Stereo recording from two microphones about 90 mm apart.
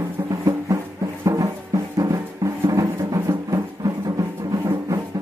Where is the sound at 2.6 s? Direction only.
40° right (ahead or behind).